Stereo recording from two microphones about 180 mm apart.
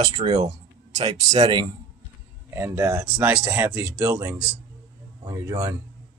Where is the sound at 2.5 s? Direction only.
15° right (ahead or behind).